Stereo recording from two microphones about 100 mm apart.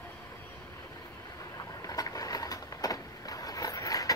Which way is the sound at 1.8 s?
35° left (ahead or behind).